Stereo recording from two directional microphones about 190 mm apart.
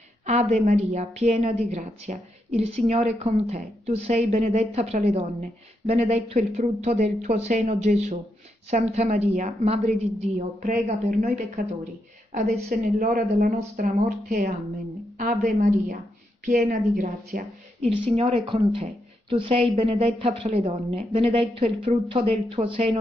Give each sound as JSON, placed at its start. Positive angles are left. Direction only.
{"t": 0.3, "sound": "a woman's voice", "side_deg": -35}
{"t": 12.6, "sound": "speech", "side_deg": -50}
{"t": 13.6, "sound": "speech", "side_deg": -40}
{"t": 17.8, "sound": "a woman's voice", "side_deg": -30}